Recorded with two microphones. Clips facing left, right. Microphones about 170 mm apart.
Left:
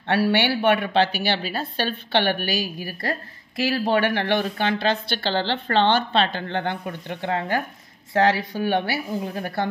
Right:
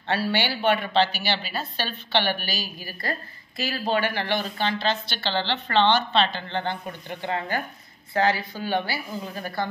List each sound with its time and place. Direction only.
0.0 s a woman's voice: 65° left (ahead or behind)